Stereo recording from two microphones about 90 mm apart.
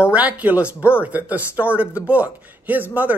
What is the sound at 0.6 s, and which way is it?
Speech, 25° left (ahead or behind).